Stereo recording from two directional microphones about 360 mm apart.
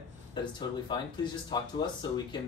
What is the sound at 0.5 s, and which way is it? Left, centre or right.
Speech, centre.